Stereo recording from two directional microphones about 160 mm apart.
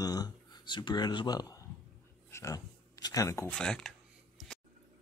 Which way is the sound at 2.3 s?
20° left (ahead or behind).